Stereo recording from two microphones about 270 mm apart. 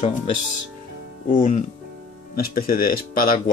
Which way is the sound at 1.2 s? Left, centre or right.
Left.